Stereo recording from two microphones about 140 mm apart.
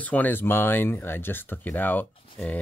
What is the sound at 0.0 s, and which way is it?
Speech, 10° left (ahead or behind).